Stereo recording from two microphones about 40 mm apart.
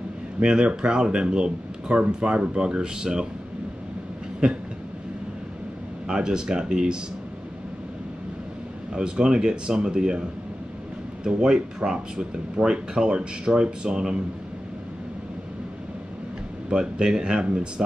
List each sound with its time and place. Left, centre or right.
0.4 s speech: right
4.4 s speech: right
6.0 s speech: centre
8.9 s speech: right
11.2 s speech: centre
16.6 s speech: centre